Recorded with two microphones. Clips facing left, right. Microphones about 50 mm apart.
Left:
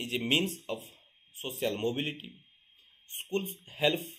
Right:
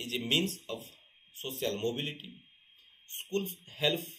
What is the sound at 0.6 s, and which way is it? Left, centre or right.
Speech, left.